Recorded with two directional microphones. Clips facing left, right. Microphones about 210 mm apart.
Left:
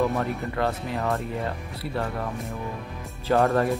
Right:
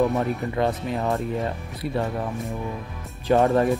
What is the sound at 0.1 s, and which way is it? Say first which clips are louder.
Speech: right 3 dB; 20° right (ahead or behind).